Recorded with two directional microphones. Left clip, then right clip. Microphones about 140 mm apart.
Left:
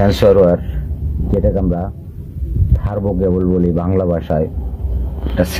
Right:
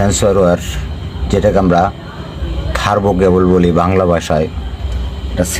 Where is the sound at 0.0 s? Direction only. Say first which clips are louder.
Left 2 dB; 5° left (ahead or behind).